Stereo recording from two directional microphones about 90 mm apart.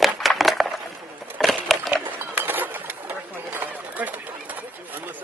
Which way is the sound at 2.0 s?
20° right (ahead or behind).